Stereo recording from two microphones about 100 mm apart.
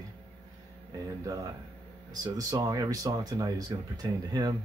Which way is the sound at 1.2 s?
35° right (ahead or behind).